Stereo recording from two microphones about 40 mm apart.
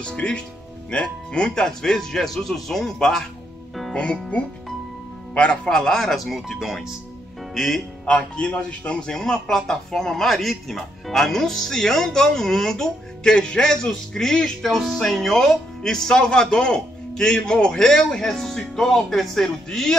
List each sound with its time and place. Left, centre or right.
0.0 s speech: left
1.5 s speech: centre
3.9 s a man's voice: left
5.7 s speech: centre
7.5 s speech: centre
8.0 s speech: left
9.1 s speech: centre